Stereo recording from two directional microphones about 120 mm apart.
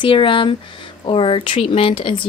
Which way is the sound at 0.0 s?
45° left (ahead or behind).